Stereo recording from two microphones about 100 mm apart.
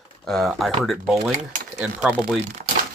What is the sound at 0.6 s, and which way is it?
Speech, centre (ahead or behind).